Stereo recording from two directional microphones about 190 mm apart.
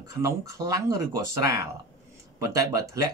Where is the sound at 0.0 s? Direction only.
15° right (ahead or behind).